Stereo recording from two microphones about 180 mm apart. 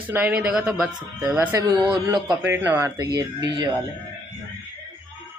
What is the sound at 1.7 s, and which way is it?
Speech, 25° right (ahead or behind).